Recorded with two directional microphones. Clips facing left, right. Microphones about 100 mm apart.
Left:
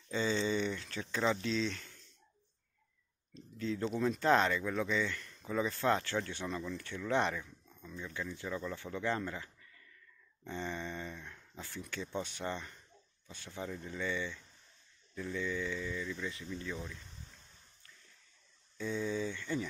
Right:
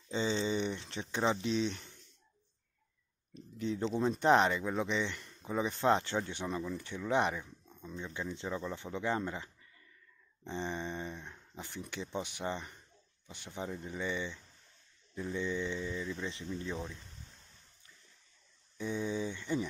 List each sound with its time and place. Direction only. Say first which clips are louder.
0.1 s speech: even; 20° right (ahead or behind)
3.5 s speech: right 2 dB; 20° right (ahead or behind)
18.8 s speech: even; 20° right (ahead or behind)